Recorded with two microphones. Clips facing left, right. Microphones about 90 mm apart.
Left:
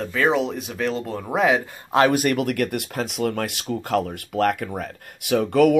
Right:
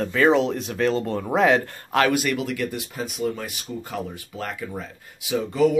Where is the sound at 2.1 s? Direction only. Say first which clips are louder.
Left 3 dB; 50° left (ahead or behind).